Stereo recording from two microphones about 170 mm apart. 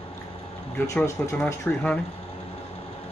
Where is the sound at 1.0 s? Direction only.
15° left (ahead or behind).